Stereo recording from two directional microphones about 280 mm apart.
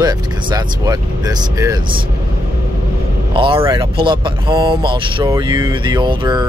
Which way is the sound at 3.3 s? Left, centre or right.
Centre.